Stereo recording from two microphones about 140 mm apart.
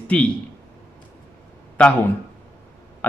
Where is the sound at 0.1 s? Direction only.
5° left (ahead or behind).